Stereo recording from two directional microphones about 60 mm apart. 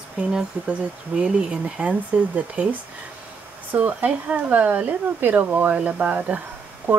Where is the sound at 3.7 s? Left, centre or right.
Right.